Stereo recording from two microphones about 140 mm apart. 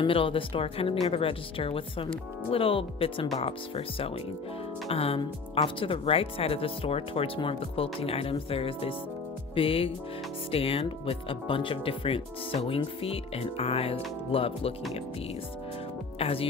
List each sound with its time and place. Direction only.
0.0 s speech: 40° left (ahead or behind)
16.2 s speech: 45° left (ahead or behind)